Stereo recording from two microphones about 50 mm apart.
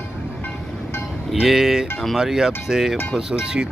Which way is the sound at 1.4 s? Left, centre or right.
Centre.